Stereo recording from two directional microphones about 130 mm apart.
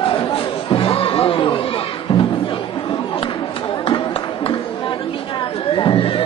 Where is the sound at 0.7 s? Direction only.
45° left (ahead or behind).